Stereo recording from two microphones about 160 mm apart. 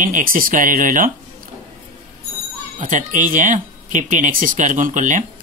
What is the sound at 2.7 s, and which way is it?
Speech, 50° right (ahead or behind).